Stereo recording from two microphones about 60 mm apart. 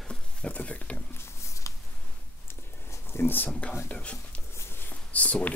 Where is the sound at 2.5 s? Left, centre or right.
Left.